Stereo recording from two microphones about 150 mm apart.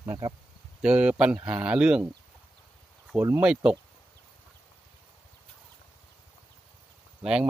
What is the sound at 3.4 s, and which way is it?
Speech, 5° right (ahead or behind).